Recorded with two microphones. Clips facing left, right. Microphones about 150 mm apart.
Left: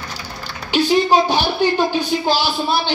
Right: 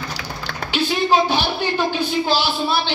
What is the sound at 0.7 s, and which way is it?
A woman's voice, 15° left (ahead or behind).